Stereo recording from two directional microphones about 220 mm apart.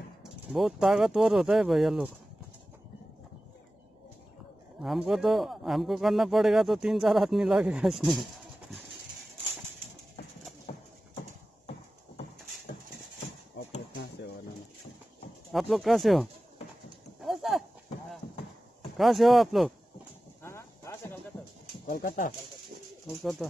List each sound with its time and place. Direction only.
0.2 s a man's voice: centre (ahead or behind)
4.8 s a man's voice: centre (ahead or behind)
15.5 s a man's voice: centre (ahead or behind)
17.2 s clip-clop: centre (ahead or behind)
18.9 s a man's voice: centre (ahead or behind)
20.4 s a sound: 10° left (ahead or behind)
21.8 s speech: 40° left (ahead or behind)